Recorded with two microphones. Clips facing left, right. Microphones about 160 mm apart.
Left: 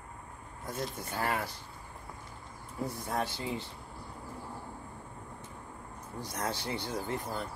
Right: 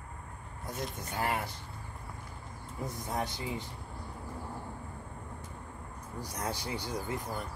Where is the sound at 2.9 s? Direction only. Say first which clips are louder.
Even; 15° right (ahead or behind).